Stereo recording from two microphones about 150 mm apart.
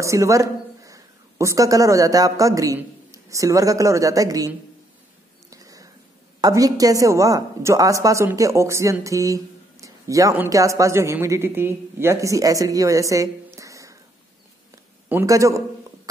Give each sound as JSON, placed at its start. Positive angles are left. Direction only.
{"t": 0.0, "sound": "a man's voice", "side_deg": -20}
{"t": 5.5, "sound": "a sound", "side_deg": -20}
{"t": 6.4, "sound": "a woman's voice", "side_deg": -25}
{"t": 15.0, "sound": "a woman's voice", "side_deg": -20}